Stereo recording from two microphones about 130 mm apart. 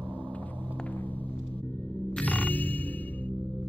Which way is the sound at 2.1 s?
10° left (ahead or behind).